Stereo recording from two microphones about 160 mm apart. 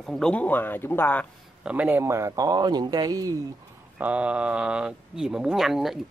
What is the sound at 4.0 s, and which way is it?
Speech, 10° right (ahead or behind).